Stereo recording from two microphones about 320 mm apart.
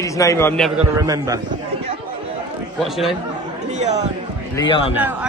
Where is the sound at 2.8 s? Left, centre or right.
Centre.